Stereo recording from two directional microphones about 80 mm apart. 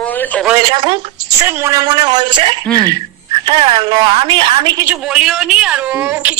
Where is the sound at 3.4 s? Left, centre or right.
Right.